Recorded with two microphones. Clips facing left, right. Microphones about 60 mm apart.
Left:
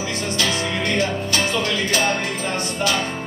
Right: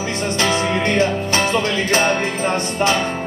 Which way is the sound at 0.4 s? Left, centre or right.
Right.